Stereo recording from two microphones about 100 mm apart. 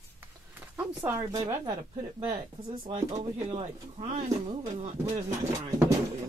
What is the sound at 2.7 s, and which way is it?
Speech, 80° right.